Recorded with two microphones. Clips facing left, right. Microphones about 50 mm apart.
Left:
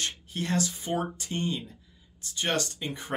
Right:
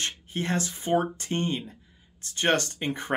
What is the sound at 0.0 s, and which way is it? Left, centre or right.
Speech, right.